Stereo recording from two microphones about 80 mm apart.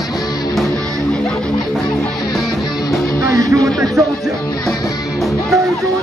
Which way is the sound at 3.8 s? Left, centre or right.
Centre.